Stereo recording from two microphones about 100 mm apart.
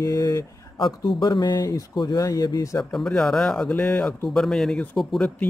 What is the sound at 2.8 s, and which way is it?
A man's voice, 5° left (ahead or behind).